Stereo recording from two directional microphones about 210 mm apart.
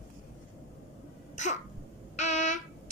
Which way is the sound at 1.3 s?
35° left (ahead or behind).